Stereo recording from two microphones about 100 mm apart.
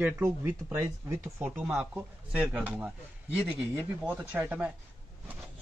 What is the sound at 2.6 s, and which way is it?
Speech, 15° right (ahead or behind).